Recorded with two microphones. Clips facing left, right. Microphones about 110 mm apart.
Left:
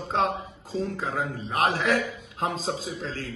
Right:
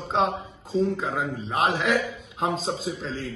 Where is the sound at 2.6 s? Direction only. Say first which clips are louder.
Right 1 dB; centre (ahead or behind).